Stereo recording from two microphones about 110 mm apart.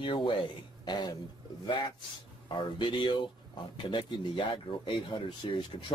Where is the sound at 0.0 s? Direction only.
50° left (ahead or behind).